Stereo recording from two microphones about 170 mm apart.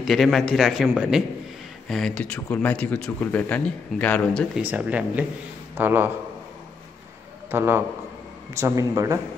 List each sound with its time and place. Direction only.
0.0 s a man's voice: centre (ahead or behind)
4.6 s speech: 10° right (ahead or behind)
7.5 s speech: 15° right (ahead or behind)